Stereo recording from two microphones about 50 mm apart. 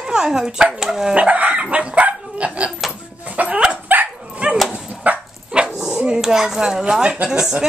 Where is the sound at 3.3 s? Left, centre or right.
Right.